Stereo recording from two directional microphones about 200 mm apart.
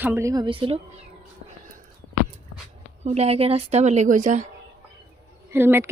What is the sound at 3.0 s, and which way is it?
A woman's voice, 30° right (ahead or behind).